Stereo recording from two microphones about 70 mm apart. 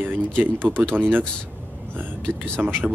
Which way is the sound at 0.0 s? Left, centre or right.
Right.